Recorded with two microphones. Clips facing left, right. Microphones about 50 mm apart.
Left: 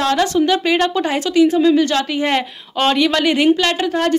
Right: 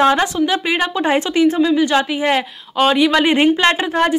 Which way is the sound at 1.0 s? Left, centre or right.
Right.